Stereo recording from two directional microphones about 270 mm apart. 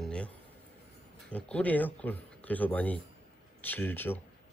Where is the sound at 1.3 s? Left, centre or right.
Centre.